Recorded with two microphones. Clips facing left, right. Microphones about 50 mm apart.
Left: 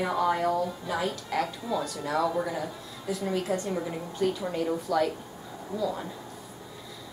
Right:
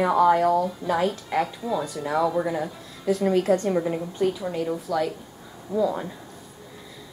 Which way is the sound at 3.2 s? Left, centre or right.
Right.